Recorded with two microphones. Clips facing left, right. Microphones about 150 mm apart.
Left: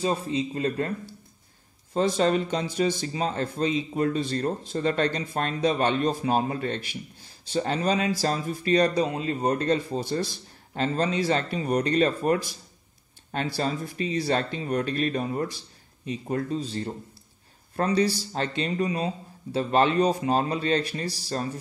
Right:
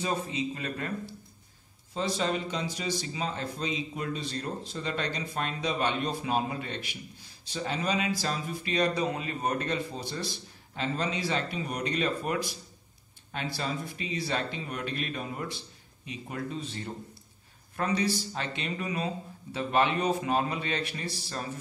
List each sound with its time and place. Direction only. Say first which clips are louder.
0.0 s speech: left 5 dB; 30° left (ahead or behind)
2.0 s speech: left 7 dB; 50° left (ahead or behind)
9.0 s speech: left 5 dB; 30° left (ahead or behind)
9.7 s speech: left 8 dB; 45° left (ahead or behind)